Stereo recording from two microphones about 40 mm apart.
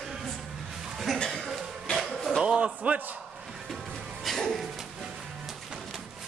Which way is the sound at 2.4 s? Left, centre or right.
Right.